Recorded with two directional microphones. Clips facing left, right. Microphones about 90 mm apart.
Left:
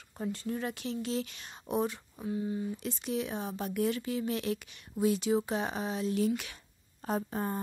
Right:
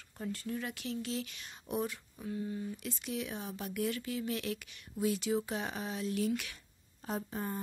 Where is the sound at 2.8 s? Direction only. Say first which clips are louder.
Left 5 dB; 30° left (ahead or behind).